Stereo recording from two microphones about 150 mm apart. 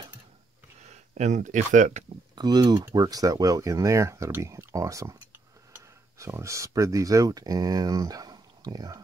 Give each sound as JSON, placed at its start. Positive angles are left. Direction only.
{"t": 0.8, "sound": "speech", "side_deg": -50}
{"t": 2.3, "sound": "speech", "side_deg": -30}